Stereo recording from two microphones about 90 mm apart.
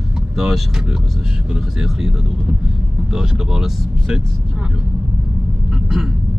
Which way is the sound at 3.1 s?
5° right (ahead or behind).